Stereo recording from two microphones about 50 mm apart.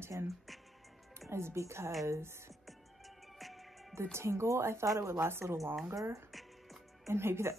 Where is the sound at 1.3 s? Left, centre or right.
Right.